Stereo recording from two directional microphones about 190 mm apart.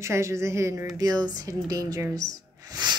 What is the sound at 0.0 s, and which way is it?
A woman's voice, 15° right (ahead or behind).